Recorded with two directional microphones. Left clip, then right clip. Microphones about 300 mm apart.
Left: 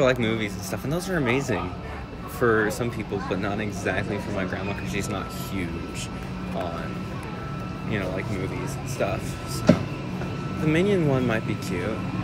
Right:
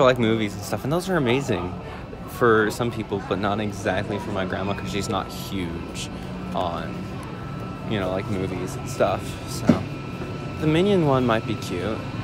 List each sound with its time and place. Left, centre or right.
0.0 s speech: centre
9.0 s speech: centre
10.6 s speech: centre